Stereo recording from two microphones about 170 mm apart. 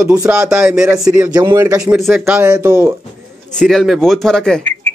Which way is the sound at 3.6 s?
Centre (ahead or behind).